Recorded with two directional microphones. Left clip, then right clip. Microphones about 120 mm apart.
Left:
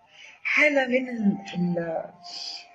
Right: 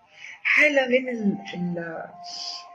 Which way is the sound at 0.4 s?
25° right (ahead or behind).